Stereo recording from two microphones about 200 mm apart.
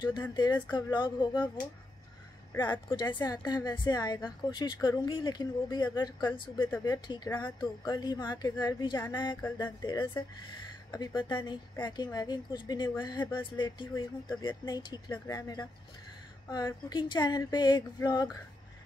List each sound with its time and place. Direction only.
0.3 s a woman's voice: 20° left (ahead or behind)